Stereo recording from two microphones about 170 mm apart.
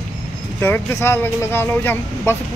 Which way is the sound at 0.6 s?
15° left (ahead or behind).